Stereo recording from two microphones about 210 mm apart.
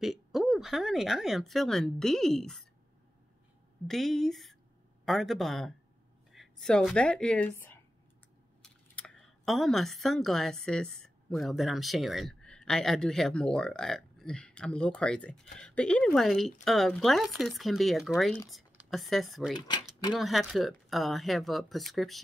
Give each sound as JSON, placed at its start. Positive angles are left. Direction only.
{"t": 0.0, "sound": "speech", "side_deg": 0}
{"t": 3.8, "sound": "speech", "side_deg": 0}
{"t": 19.5, "sound": "speech", "side_deg": 20}
{"t": 20.2, "sound": "speech", "side_deg": 0}